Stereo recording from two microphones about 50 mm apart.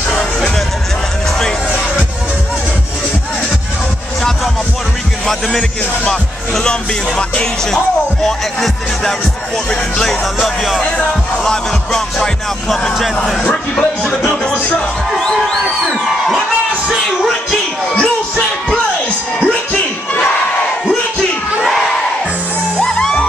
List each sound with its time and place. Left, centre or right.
5.2 s speech: centre
7.7 s speech: centre
9.7 s music: centre
10.2 s speech: centre
10.8 s speech: left
11.4 s music: centre
14.3 s music: centre
15.8 s a sound: centre
18.7 s music: left
22.8 s music: centre